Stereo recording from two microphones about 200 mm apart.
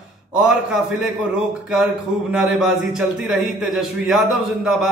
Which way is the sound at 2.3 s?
Centre (ahead or behind).